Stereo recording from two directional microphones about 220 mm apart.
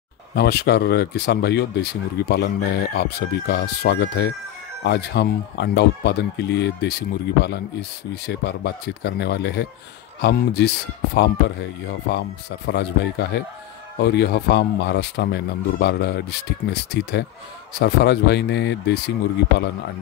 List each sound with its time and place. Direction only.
0.3 s speech: 45° left (ahead or behind)